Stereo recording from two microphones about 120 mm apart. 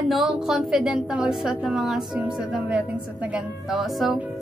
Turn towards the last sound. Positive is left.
turn(degrees=-5)  # may be behind; listen again after turning